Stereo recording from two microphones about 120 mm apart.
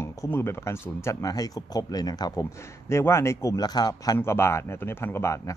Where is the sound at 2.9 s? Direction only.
20° left (ahead or behind).